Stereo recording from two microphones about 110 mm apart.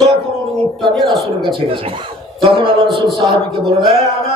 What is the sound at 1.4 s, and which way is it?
Speech, 50° right (ahead or behind).